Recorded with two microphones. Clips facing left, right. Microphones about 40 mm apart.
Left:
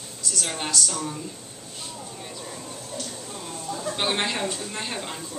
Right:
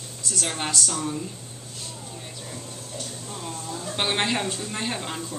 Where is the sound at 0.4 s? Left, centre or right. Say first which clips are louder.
Right 1 dB; centre.